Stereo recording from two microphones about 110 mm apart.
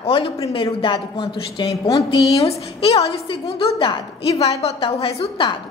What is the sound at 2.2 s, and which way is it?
Speech, 30° left (ahead or behind).